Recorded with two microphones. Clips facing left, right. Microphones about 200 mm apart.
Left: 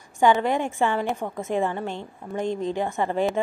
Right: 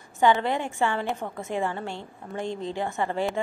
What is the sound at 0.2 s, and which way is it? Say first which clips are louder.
A woman's voice: left 2 dB; 15° left (ahead or behind).